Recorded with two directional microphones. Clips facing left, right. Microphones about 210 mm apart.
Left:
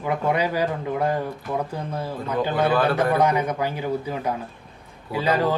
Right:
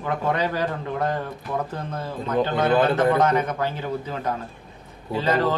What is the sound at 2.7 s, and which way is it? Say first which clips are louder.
Speech: right 2 dB; 20° right (ahead or behind).